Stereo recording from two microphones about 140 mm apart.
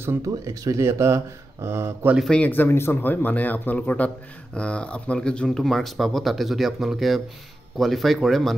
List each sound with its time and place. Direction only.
0.0 s speech: 20° right (ahead or behind)
2.1 s speech: 5° left (ahead or behind)